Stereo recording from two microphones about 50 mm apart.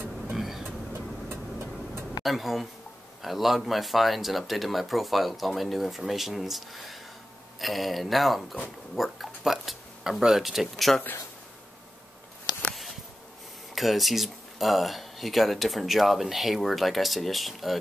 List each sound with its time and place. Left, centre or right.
0.4 s vehicle: centre
2.2 s speech: centre
13.7 s speech: centre